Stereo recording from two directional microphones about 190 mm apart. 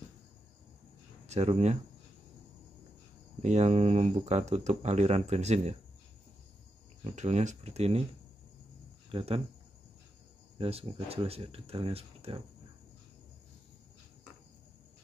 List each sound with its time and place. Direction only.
1.2 s speech: 35° right (ahead or behind)
3.4 s speech: 35° right (ahead or behind)
7.2 s speech: 35° right (ahead or behind)
9.1 s speech: 30° right (ahead or behind)
10.6 s speech: 30° right (ahead or behind)